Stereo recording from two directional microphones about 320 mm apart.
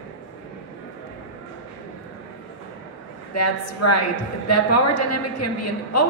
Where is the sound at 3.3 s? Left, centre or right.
Left.